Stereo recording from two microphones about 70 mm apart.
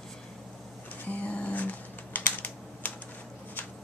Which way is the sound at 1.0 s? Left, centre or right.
Left.